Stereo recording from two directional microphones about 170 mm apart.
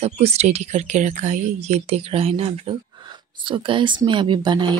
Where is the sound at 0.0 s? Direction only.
35° right (ahead or behind).